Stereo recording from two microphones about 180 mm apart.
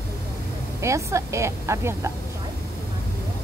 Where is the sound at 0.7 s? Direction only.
15° right (ahead or behind).